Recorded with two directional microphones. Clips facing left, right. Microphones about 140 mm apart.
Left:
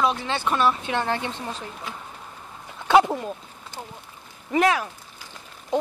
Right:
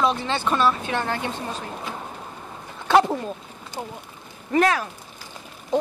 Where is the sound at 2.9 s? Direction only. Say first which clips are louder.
Even; 5° left (ahead or behind).